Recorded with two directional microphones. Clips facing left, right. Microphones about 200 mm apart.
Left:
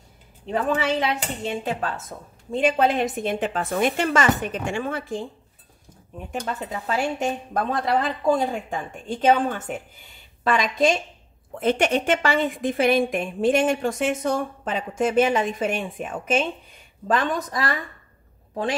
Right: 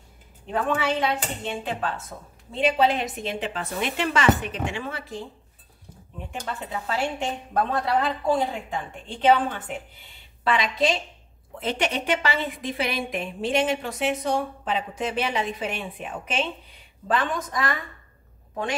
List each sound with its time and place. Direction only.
1.4 s a woman's voice: 40° left (ahead or behind)
6.4 s a woman's voice: 40° left (ahead or behind)